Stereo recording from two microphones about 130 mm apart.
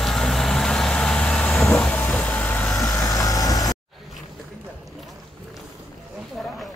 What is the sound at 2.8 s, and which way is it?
Vehicle, 25° left (ahead or behind).